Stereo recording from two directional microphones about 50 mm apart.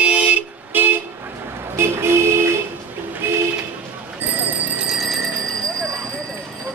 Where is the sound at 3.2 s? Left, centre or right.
Right.